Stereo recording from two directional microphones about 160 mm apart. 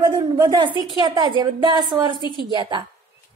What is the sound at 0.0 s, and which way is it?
A woman's voice, 25° right (ahead or behind).